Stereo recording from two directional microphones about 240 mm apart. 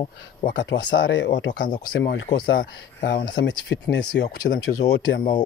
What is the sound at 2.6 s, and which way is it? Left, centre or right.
Speech, left.